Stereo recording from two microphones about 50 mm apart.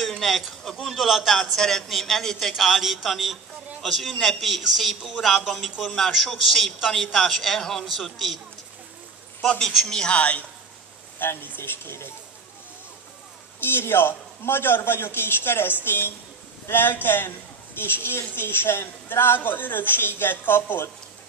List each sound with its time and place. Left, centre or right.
0.0 s a sound: centre
0.7 s a man's voice: centre
0.9 s a man's voice: centre
1.4 s a man's voice: centre
2.5 s a man's voice: centre
9.8 s a man's voice: centre
10.1 s speech: left
11.1 s a man's voice: left
13.6 s a man's voice: left